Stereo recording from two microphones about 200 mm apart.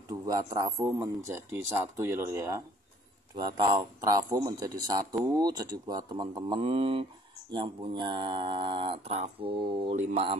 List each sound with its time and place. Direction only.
0.1 s speech: 20° right (ahead or behind)